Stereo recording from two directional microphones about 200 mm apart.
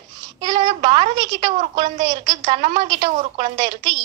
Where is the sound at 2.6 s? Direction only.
35° right (ahead or behind).